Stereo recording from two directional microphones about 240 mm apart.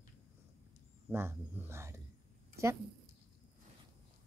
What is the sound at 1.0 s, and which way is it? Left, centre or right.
Speech, centre.